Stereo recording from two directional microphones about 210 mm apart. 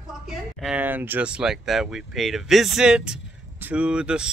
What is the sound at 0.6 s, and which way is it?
Speech, 5° right (ahead or behind).